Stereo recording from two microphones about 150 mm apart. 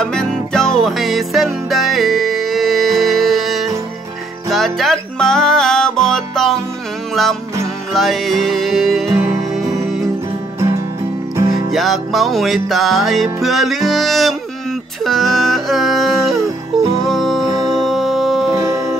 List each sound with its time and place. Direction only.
0.0 s music: 5° left (ahead or behind)
11.5 s music: centre (ahead or behind)
18.6 s music: 20° right (ahead or behind)